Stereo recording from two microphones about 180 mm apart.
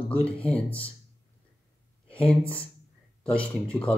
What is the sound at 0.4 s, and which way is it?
Speech, 5° left (ahead or behind).